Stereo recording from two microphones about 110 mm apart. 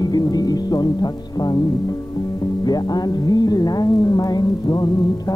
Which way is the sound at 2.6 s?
40° left (ahead or behind).